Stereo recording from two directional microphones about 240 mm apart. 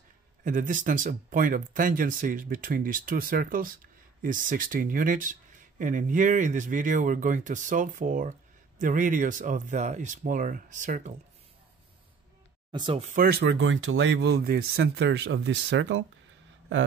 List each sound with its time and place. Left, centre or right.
0.4 s speech: right
12.7 s speech: right
13.1 s speech: right